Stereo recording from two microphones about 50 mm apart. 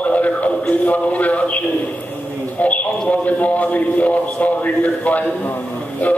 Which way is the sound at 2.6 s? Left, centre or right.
Left.